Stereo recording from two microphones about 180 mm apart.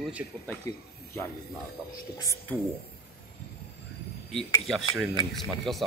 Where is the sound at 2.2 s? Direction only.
15° left (ahead or behind).